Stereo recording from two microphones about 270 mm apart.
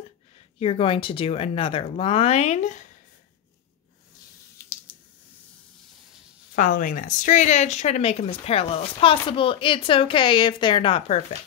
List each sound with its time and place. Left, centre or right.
0.6 s speech: left
4.6 s a sound: centre
6.5 s speech: left